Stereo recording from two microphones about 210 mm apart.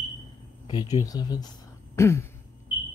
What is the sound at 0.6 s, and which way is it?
Speech, 20° left (ahead or behind).